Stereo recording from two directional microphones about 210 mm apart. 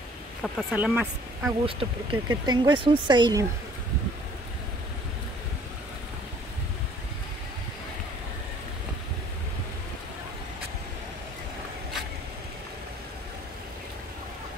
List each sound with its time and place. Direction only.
0.4 s speech: centre (ahead or behind)
1.7 s speech: 25° right (ahead or behind)